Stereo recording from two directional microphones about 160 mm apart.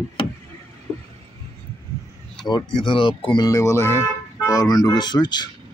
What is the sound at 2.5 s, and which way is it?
Speech, 30° left (ahead or behind).